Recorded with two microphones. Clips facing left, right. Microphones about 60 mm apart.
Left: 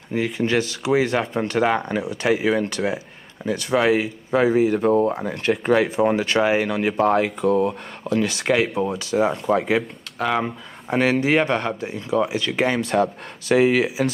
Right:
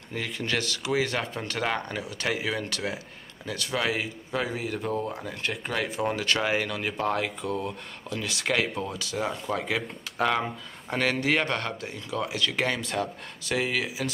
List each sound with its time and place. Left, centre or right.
0.1 s speech: centre
4.7 s speech: left
5.8 s speech: centre
7.4 s speech: left
8.4 s speech: centre
10.1 s speech: centre
10.4 s speech: centre
13.6 s speech: left